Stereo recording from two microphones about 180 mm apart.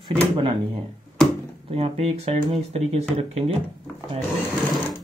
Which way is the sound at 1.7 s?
35° right (ahead or behind).